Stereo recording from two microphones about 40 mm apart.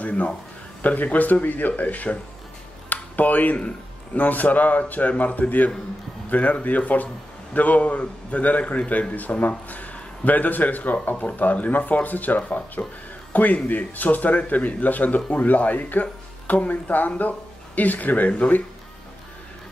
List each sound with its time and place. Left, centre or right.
0.0 s speech: left
2.9 s a sound: left
3.5 s a man's voice: left
4.2 s speech: left